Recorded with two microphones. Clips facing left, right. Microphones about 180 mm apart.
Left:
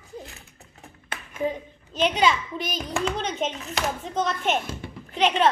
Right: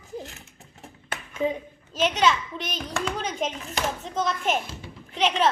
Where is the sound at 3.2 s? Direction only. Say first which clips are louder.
Left 1 dB; centre (ahead or behind).